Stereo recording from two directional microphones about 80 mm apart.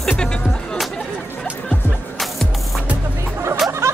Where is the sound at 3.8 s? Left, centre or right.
Right.